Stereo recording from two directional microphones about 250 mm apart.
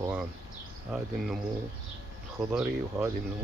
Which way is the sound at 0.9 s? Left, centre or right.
Centre.